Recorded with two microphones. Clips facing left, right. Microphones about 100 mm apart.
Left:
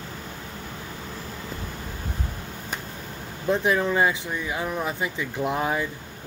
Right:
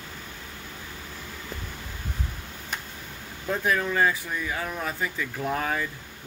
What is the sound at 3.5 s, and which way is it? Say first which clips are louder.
Speech: left 4 dB; 20° left (ahead or behind).